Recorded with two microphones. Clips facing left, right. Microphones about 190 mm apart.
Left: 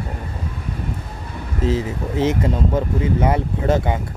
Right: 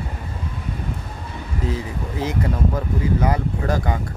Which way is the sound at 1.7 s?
25° left (ahead or behind).